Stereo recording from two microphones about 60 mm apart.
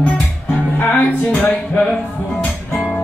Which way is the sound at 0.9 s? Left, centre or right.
Left.